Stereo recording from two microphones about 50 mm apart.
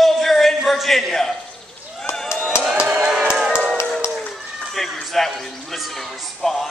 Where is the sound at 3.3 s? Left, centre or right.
Centre.